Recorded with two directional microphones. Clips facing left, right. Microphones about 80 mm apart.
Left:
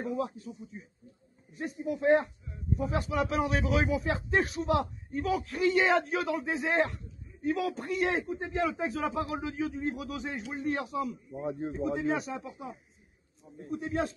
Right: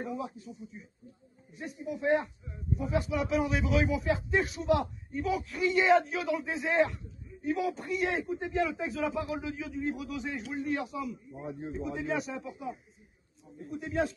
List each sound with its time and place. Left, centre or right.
0.0 s a sound: left
1.6 s speech: left
7.4 s speech: left
8.4 s speech: left